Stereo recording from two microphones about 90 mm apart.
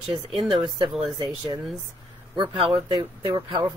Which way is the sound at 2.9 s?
50° right (ahead or behind).